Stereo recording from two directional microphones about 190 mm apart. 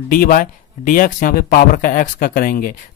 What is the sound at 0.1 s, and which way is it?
Speech, 45° left (ahead or behind).